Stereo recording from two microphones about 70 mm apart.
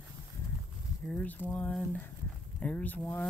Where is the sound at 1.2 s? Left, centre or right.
Left.